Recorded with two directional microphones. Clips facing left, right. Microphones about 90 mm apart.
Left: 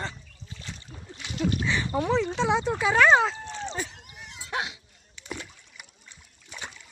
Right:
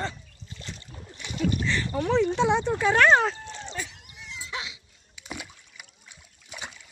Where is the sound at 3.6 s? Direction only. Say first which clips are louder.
Left 3 dB; 35° left (ahead or behind).